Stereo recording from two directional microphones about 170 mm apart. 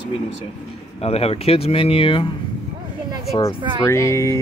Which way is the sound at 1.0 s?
35° left (ahead or behind).